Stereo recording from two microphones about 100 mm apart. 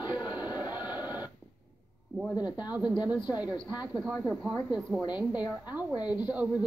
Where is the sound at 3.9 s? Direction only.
5° left (ahead or behind); by 5.1 s 10° right (ahead or behind).